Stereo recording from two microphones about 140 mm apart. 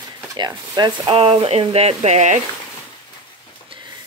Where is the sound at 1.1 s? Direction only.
40° right (ahead or behind).